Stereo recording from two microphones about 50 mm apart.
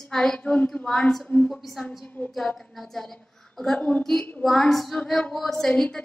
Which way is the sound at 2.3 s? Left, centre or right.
Centre.